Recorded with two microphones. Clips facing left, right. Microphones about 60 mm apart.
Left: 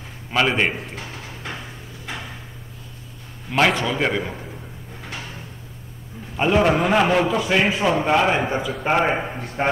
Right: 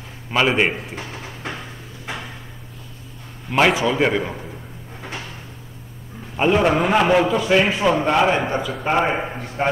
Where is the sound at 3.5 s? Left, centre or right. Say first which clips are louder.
Right 2 dB; centre.